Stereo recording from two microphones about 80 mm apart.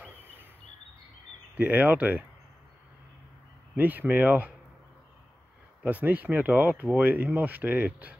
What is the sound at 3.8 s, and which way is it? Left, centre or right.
Speech, right.